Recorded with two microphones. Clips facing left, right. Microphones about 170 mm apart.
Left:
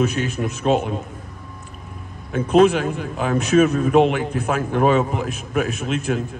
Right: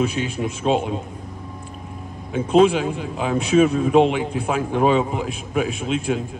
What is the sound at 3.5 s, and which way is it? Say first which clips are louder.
A man's voice: even; centre (ahead or behind).